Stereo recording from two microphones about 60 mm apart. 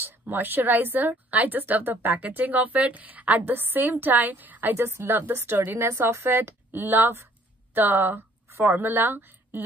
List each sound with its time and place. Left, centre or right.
0.0 s a woman's voice: right
4.7 s a woman's voice: right
5.9 s a woman's voice: right